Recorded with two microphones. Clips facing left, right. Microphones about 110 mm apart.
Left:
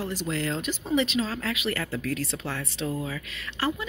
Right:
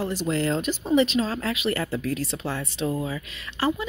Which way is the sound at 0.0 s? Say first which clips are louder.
Right 4 dB; 35° right (ahead or behind).